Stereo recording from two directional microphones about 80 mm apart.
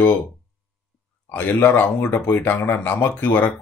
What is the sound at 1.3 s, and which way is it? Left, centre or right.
Speech, left.